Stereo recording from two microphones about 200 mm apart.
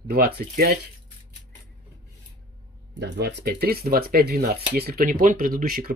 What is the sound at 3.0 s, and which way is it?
Speech, 55° right (ahead or behind).